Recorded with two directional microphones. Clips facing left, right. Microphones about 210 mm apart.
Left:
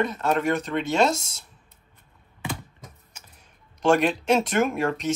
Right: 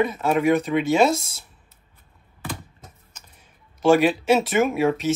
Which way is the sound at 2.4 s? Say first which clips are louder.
Left 1 dB; 10° left (ahead or behind).